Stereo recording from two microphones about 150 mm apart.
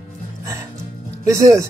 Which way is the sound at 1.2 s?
20° right (ahead or behind).